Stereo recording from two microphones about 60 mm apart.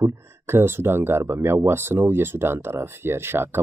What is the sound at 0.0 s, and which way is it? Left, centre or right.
Speech, right.